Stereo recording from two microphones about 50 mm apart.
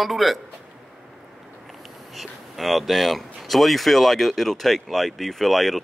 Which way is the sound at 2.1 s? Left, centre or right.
Centre.